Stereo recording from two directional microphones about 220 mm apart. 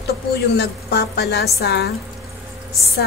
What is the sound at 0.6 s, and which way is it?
A woman's voice, 50° left (ahead or behind).